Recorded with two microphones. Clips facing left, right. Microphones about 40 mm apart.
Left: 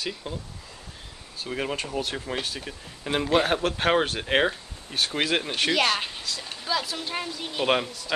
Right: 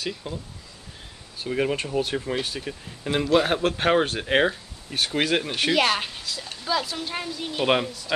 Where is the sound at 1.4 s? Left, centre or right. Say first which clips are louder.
Right 5 dB; centre.